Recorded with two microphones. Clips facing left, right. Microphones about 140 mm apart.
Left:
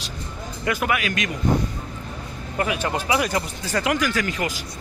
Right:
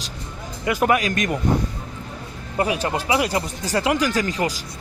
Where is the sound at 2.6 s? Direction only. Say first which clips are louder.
Right 2 dB; 30° right (ahead or behind).